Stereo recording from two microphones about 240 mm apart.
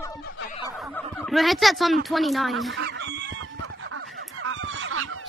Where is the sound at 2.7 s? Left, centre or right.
Right.